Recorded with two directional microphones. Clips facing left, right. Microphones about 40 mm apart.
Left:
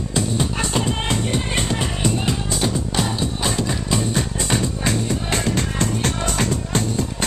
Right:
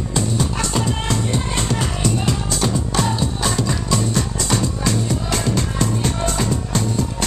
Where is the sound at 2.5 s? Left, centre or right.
Centre.